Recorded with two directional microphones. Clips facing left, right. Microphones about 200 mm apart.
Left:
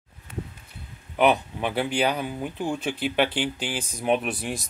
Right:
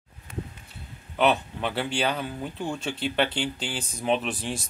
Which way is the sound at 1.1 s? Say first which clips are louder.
Left 2 dB; 15° left (ahead or behind).